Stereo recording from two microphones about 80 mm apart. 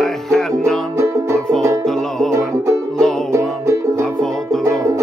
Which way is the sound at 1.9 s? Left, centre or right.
Centre.